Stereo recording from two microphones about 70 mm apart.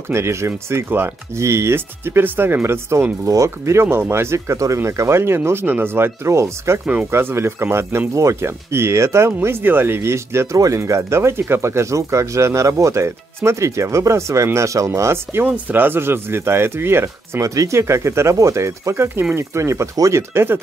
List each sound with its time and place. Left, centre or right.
0.1 s speech: right
6.2 s speech: right
8.1 s speech: right
15.4 s speech: right
17.4 s speech: right